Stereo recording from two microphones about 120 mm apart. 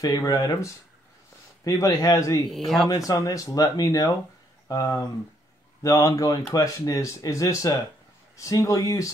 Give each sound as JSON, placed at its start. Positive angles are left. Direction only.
{"t": 0.0, "sound": "speech", "side_deg": 30}
{"t": 2.5, "sound": "speech", "side_deg": 0}
{"t": 2.9, "sound": "speech", "side_deg": 30}